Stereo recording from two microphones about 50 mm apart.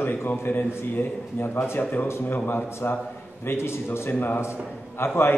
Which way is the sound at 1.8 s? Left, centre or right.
Left.